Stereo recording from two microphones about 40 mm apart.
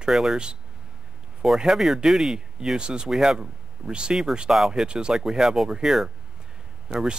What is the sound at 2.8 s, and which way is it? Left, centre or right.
Speech, right.